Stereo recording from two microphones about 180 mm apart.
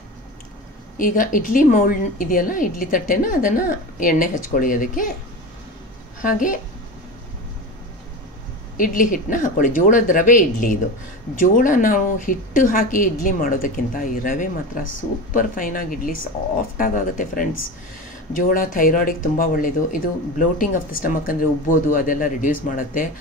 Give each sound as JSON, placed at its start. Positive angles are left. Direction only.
{"t": 0.9, "sound": "a woman's voice", "side_deg": 50}
{"t": 6.2, "sound": "a woman's voice", "side_deg": 50}
{"t": 8.7, "sound": "a woman's voice", "side_deg": 50}